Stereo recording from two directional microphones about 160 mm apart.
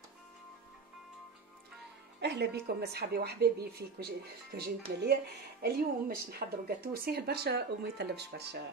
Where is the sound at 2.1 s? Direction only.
90° right.